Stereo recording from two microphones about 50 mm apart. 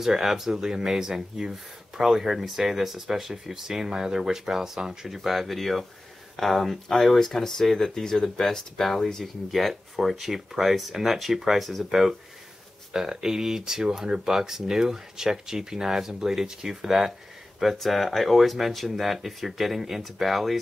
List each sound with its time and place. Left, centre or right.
0.0 s speech: centre